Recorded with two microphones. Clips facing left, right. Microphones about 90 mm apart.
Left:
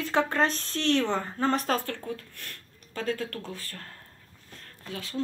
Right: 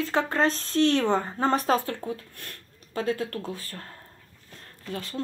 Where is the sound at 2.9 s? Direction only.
30° right (ahead or behind).